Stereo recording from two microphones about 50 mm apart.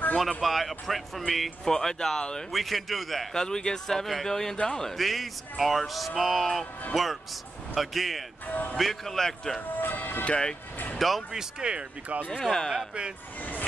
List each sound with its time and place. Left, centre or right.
0.4 s speech: centre
2.5 s speech: centre
3.3 s speech: centre
8.5 s speech: left
8.7 s speech: centre
9.8 s music: left
10.2 s speech: left
11.0 s speech: centre
11.3 s speech: centre
12.3 s speech: centre
12.7 s speech: centre